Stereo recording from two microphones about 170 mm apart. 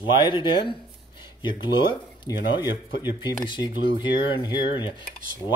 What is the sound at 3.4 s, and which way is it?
Speech, 25° left (ahead or behind).